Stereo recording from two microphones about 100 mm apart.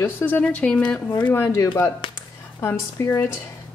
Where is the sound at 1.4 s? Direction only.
30° left (ahead or behind).